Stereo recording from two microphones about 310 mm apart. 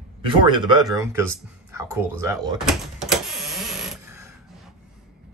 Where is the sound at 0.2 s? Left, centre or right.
Centre.